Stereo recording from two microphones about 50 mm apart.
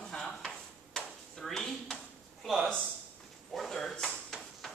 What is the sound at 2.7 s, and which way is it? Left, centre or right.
Speech, centre.